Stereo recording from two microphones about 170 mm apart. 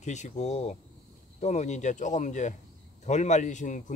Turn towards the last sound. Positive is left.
turn(degrees=45)  # may be behind; listen again after turning